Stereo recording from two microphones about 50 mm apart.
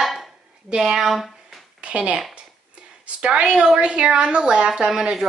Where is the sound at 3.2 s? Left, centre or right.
Right.